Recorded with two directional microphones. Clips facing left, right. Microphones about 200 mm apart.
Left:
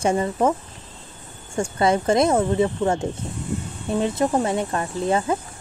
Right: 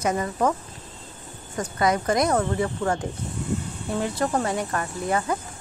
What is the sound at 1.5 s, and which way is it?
Speech, 30° left (ahead or behind).